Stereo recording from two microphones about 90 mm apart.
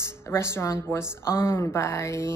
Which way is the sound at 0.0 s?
30° left (ahead or behind).